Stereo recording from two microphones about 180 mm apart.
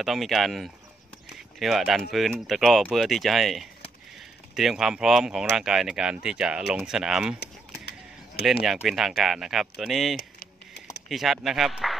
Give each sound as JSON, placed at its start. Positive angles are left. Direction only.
{"t": 0.0, "sound": "speech", "side_deg": 0}
{"t": 8.6, "sound": "speech", "side_deg": 0}
{"t": 10.1, "sound": "keys jangling", "side_deg": 55}
{"t": 11.1, "sound": "speech", "side_deg": 0}